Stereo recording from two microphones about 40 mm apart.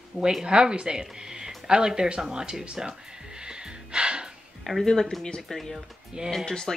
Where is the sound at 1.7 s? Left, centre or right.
Centre.